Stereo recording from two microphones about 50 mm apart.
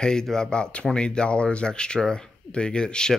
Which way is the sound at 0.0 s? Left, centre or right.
Centre.